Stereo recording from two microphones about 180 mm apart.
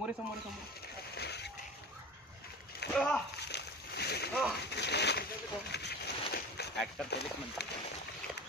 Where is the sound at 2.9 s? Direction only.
5° left (ahead or behind).